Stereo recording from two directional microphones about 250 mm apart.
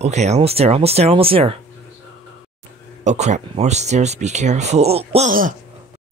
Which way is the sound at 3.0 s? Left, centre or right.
Right.